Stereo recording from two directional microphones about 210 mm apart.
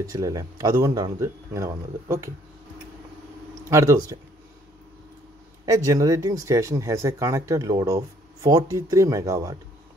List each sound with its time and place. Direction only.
0.0 s speech: 15° right (ahead or behind)
3.7 s speech: 15° right (ahead or behind)
5.9 s speech: 15° right (ahead or behind)